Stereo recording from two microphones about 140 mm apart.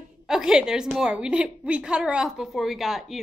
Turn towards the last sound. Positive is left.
turn(degrees=0)  # may be behind; listen again after turning